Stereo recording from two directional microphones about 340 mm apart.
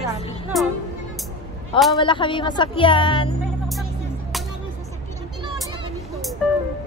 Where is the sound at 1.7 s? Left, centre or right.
Centre.